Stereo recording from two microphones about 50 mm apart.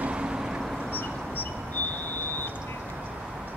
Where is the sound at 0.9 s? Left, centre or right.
Left.